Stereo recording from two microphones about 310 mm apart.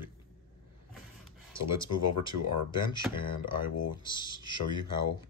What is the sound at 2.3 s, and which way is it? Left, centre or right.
Speech, left.